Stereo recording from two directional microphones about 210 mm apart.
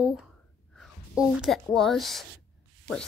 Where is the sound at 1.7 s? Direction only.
Centre (ahead or behind).